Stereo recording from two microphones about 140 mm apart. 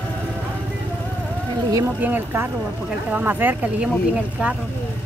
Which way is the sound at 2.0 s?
15° right (ahead or behind).